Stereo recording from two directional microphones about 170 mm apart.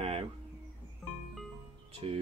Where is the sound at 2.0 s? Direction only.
35° right (ahead or behind).